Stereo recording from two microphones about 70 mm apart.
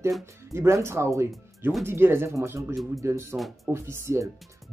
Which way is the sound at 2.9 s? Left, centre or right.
Right.